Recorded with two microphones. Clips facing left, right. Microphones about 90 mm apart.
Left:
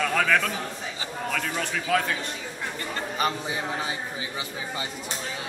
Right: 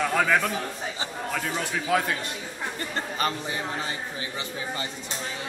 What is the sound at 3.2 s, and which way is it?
Speech, 10° left (ahead or behind).